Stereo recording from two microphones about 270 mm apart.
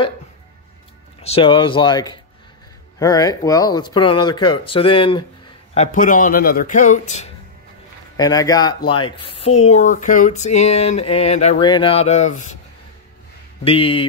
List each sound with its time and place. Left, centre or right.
1.2 s speech: centre
8.2 s speech: centre
13.7 s speech: centre